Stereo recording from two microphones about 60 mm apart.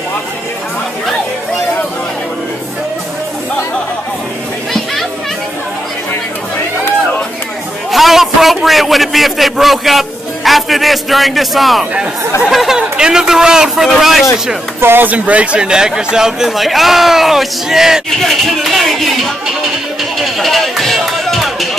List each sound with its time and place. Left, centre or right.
7.9 s a sound: centre
8.6 s a man's voice: centre
14.8 s speech: right
15.0 s speech: right; by 18.0 s centre
18.1 s a man's voice: centre
20.0 s music: centre